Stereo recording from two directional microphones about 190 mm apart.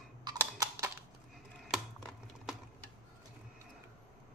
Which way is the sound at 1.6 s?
Centre (ahead or behind).